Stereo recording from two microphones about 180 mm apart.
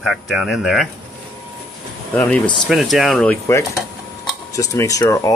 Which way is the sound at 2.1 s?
5° left (ahead or behind).